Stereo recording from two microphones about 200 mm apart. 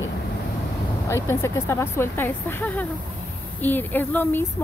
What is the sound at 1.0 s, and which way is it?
Speech, 15° left (ahead or behind).